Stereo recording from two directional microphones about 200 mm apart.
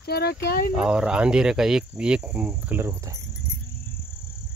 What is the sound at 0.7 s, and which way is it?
Cricket, 5° right (ahead or behind).